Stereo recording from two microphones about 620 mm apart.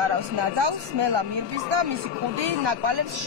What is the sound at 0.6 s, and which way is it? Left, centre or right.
Speech, right.